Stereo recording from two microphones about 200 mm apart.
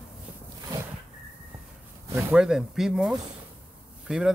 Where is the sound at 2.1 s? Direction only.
5° right (ahead or behind).